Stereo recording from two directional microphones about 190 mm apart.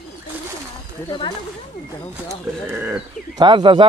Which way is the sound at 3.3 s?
25° right (ahead or behind).